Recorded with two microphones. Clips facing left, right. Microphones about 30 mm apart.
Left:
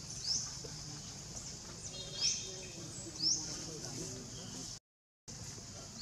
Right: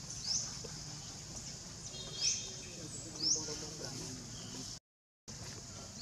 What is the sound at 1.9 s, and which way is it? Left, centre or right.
Bird, centre.